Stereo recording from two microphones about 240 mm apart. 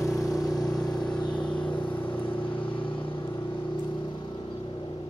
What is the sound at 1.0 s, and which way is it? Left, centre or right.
Vehicle, centre.